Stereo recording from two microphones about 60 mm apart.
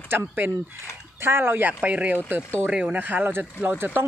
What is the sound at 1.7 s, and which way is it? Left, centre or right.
Speech, right.